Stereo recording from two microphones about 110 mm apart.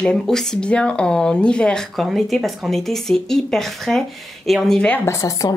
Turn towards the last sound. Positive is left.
turn(degrees=30)  # may be behind; listen again after turning